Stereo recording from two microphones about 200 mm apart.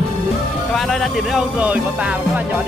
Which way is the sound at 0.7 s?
Centre (ahead or behind).